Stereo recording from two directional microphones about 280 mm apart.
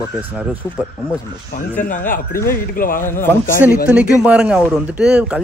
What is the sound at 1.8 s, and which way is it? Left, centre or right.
A man's voice, left.